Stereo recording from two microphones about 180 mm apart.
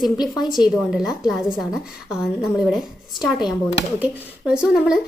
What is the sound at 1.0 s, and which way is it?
A woman's voice, 5° right (ahead or behind).